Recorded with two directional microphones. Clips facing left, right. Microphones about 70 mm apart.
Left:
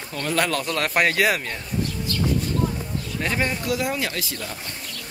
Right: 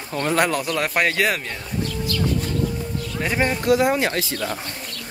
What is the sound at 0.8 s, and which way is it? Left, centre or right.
Speech, centre.